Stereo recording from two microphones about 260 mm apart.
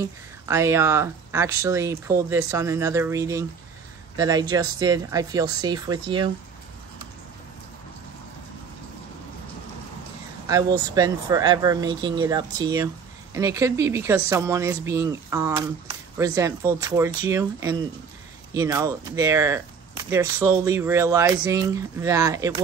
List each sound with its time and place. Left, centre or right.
0.0 s speech: centre
10.4 s speech: centre